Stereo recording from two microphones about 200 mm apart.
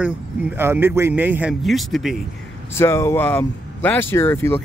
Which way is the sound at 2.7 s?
15° left (ahead or behind).